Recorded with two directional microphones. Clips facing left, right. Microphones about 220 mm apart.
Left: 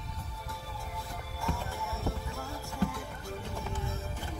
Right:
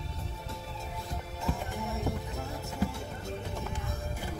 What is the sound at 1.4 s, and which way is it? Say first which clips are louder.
Music: right 2 dB; 20° right (ahead or behind).